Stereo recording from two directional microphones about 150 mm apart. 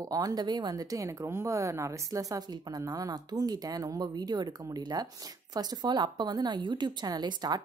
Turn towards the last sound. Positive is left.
turn(degrees=-30)  # may be behind; listen again after turning